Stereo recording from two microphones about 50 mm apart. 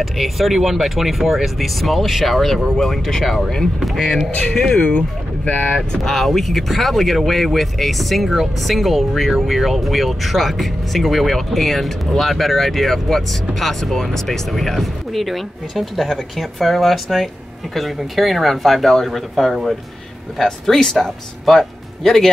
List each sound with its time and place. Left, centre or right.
0.0 s speech: centre
4.7 s speech: left
6.0 s speech: centre